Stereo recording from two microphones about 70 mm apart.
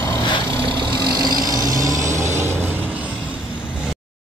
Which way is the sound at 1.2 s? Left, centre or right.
Right.